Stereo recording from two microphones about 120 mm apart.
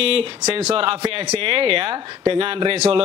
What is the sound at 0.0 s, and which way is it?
Speech, 50° right (ahead or behind).